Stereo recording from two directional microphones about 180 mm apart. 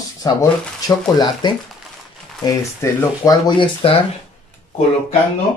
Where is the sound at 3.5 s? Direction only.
30° left (ahead or behind).